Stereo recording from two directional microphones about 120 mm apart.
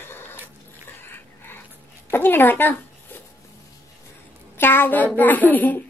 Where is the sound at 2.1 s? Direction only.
20° left (ahead or behind).